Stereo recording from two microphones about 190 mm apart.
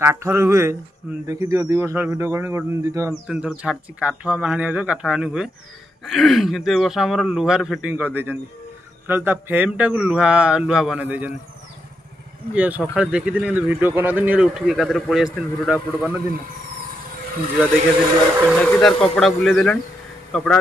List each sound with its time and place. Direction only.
0.0 s speech: 15° right (ahead or behind)
3.3 s speech: 5° right (ahead or behind)
12.5 s speech: 5° right (ahead or behind)
18.3 s speech: 10° right (ahead or behind)
18.6 s speech: 5° left (ahead or behind)